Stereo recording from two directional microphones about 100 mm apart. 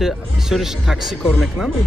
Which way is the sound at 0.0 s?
5° right (ahead or behind).